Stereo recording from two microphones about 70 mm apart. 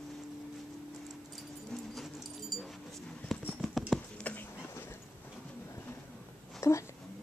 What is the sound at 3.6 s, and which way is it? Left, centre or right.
Clip-clop, centre.